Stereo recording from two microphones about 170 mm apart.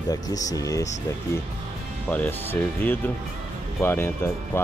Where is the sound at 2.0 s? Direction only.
10° left (ahead or behind).